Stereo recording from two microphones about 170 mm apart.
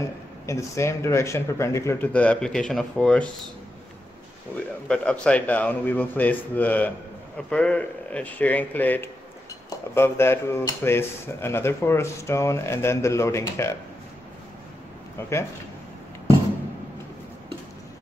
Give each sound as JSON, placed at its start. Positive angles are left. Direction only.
{"t": 0.5, "sound": "speech", "side_deg": 15}
{"t": 4.6, "sound": "speech", "side_deg": 5}
{"t": 15.1, "sound": "speech", "side_deg": 15}